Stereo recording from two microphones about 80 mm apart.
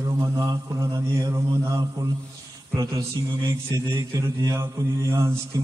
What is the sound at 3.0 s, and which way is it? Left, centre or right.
Mantra, right.